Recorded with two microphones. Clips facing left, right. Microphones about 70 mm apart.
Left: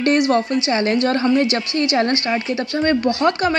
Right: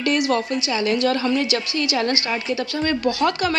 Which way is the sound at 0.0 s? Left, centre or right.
Left.